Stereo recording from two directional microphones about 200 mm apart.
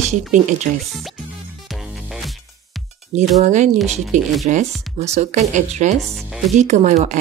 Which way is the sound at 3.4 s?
35° right (ahead or behind).